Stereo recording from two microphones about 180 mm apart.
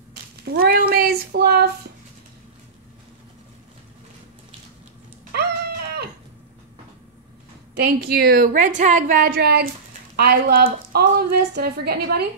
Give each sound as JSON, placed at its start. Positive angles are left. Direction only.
{"t": 0.5, "sound": "child singing", "side_deg": -55}
{"t": 5.3, "sound": "a sound", "side_deg": -60}
{"t": 7.7, "sound": "a woman's voice", "side_deg": -65}